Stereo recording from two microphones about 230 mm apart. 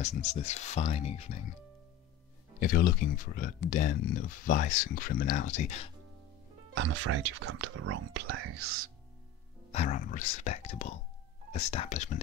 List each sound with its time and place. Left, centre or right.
0.0 s speech: left
2.6 s speech: left
7.2 s speech: right
9.7 s speech: left